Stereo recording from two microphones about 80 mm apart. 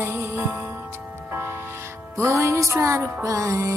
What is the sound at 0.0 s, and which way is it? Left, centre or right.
Music, right.